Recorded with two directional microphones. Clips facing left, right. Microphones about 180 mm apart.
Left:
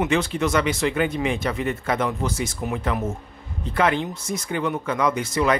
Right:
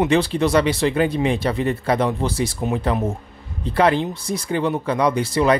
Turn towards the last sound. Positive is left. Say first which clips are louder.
# right 4 dB
turn(degrees=-35)  # may be behind; listen again after turning